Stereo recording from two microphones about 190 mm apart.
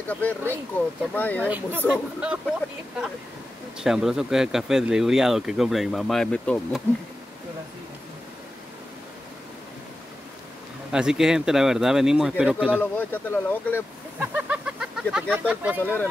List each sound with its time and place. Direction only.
0.1 s speech: 10° left (ahead or behind)
1.4 s speech: 10° right (ahead or behind)
3.8 s speech: centre (ahead or behind)
10.9 s speech: 5° right (ahead or behind)
12.8 s speech: 10° left (ahead or behind)
14.2 s a sound: 10° right (ahead or behind)
15.3 s speech: 5° right (ahead or behind)
15.8 s speech: 10° left (ahead or behind)